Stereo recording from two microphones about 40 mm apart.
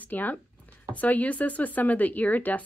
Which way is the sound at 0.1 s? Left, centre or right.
Left.